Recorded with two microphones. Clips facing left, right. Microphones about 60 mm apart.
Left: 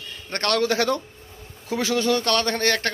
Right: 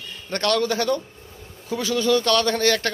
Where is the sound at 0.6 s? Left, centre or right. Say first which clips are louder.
Left 1 dB; left.